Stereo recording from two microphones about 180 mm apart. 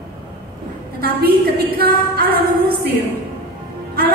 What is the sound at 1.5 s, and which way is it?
A woman's voice, 60° right (ahead or behind).